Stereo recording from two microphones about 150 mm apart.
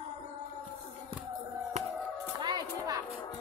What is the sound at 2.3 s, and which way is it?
Children playing, 30° right (ahead or behind).